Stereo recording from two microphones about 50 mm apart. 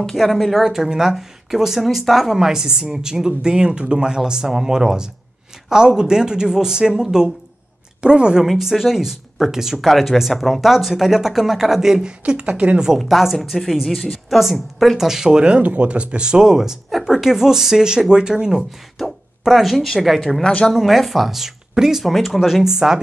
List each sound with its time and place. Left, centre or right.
0.1 s speech: centre
0.7 s a woman's voice: centre
8.5 s speech: centre; by 12.7 s right
12.7 s speech: centre
13.0 s speech: centre
18.9 s speech: centre
20.4 s speech: centre
20.7 s speech: centre